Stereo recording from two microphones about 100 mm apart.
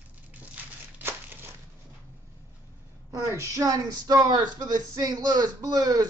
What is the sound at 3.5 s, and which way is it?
Speech, 35° right (ahead or behind).